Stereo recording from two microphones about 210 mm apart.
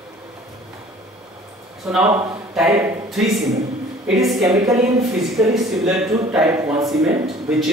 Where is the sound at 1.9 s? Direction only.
5° right (ahead or behind).